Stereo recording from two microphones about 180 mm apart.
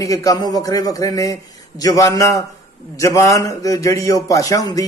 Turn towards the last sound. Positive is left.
turn(degrees=20)  # may be behind; listen again after turning